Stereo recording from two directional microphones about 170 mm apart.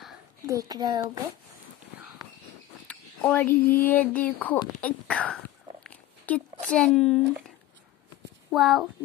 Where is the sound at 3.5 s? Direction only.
60° left (ahead or behind).